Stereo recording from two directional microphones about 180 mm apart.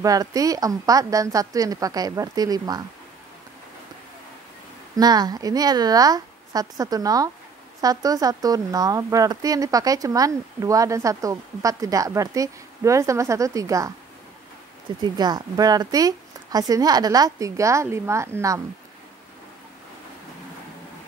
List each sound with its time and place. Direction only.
0.0 s speech: 20° right (ahead or behind)
4.9 s speech: 20° right (ahead or behind)
15.0 s speech: 25° right (ahead or behind)